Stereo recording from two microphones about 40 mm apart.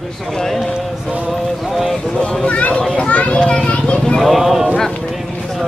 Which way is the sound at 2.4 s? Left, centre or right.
Left.